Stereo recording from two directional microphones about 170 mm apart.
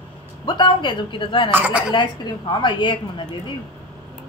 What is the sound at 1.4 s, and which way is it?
Speech, 10° right (ahead or behind).